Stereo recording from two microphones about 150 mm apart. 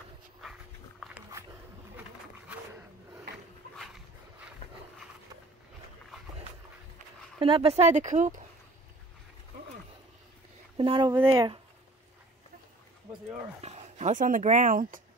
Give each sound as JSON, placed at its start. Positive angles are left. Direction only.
{"t": 0.4, "sound": "dog", "side_deg": 0}
{"t": 2.0, "sound": "pigeon", "side_deg": -10}
{"t": 3.7, "sound": "a sound", "side_deg": 0}
{"t": 7.3, "sound": "speech", "side_deg": -35}
{"t": 10.8, "sound": "speech", "side_deg": -35}
{"t": 13.6, "sound": "speech", "side_deg": -45}